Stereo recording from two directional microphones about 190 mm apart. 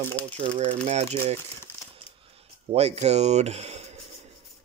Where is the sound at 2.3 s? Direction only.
35° right (ahead or behind).